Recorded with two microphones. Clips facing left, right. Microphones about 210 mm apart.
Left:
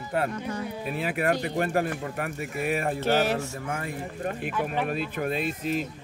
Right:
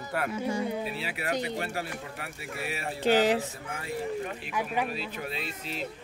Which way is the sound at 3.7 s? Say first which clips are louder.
Right 4 dB; 50° left (ahead or behind).